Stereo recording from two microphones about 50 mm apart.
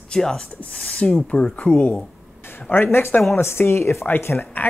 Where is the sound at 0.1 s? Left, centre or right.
Centre; by 2.0 s left.